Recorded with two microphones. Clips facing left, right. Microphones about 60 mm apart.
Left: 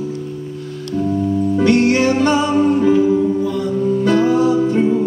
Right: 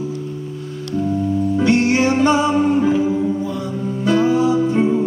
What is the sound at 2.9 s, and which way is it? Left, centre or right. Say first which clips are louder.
Music: left 4 dB; centre.